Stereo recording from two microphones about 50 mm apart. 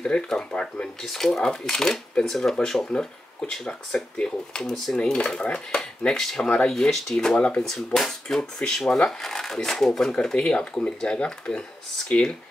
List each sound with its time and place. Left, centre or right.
0.0 s speech: centre
1.0 s speech: centre
4.9 s dishes: centre
5.8 s speech: centre
6.4 s dishes: left
6.7 s speech: centre
7.3 s dishes: left
7.7 s speech: centre
10.3 s speech: centre
11.1 s dishes: centre
12.1 s speech: centre